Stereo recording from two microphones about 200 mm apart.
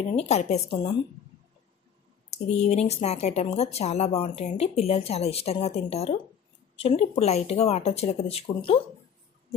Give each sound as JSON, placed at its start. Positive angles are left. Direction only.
{"t": 0.1, "sound": "a woman's voice", "side_deg": 30}
{"t": 2.3, "sound": "speech", "side_deg": 35}